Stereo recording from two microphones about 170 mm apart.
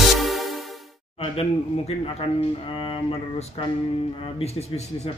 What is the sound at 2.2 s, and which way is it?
Speech, 35° left (ahead or behind).